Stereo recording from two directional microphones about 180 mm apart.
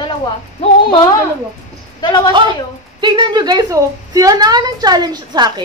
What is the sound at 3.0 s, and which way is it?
A woman's voice, 25° right (ahead or behind).